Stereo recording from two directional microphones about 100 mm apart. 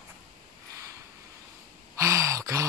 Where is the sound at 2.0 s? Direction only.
30° right (ahead or behind).